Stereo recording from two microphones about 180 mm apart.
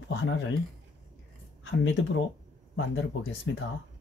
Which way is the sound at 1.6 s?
90° left.